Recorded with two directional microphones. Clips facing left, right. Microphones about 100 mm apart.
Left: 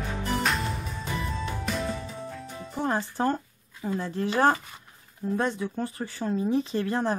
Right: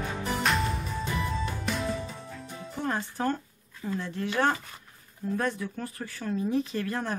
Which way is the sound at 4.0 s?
35° left (ahead or behind).